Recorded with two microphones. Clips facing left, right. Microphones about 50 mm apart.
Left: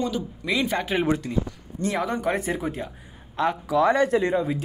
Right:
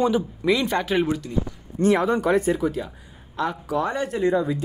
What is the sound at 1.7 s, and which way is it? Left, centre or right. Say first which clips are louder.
Speech: right 6 dB; right.